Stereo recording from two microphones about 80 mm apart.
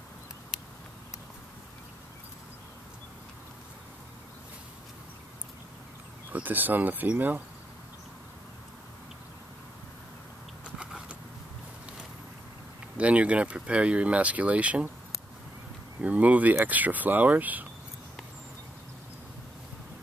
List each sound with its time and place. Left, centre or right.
6.3 s speech: right
10.6 s a sound: centre
12.9 s speech: centre
16.0 s speech: centre